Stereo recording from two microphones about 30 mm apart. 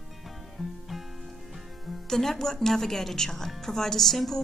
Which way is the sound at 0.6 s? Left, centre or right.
Centre.